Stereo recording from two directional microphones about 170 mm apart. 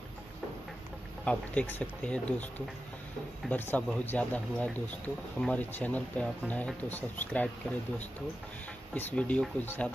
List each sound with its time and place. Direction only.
1.2 s speech: 10° left (ahead or behind)
3.4 s speech: 10° left (ahead or behind)
8.9 s speech: 5° left (ahead or behind)